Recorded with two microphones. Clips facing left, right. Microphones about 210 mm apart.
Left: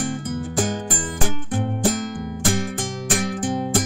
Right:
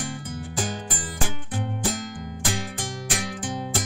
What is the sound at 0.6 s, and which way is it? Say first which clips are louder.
Music: left 6 dB; 45° left (ahead or behind).